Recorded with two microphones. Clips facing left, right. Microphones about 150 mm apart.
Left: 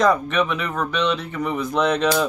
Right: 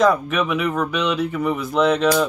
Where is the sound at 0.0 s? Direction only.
5° right (ahead or behind).